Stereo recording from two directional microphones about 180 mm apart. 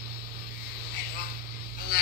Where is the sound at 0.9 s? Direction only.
55° left (ahead or behind).